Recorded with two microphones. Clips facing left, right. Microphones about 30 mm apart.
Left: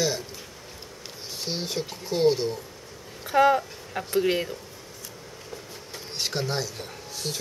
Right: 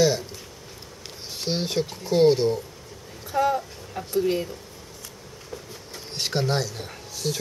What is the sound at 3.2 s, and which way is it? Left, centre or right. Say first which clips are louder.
Speech: left 3 dB; left.